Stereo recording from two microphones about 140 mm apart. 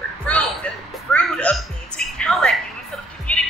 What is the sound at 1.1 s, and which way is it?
Music, 5° left (ahead or behind).